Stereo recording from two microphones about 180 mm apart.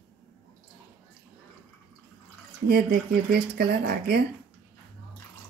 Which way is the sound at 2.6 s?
60° right (ahead or behind).